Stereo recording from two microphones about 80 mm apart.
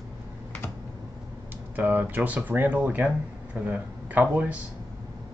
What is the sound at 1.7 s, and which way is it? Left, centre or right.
A man's voice, right.